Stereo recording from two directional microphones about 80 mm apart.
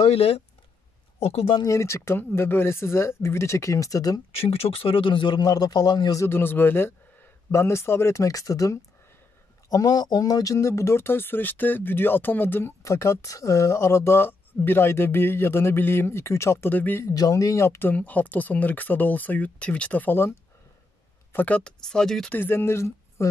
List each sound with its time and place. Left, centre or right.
1.7 s speech: left
4.9 s a man's voice: left
6.1 s speech: left
16.7 s speech: left
17.0 s speech: left
17.9 s speech: centre
22.3 s speech: left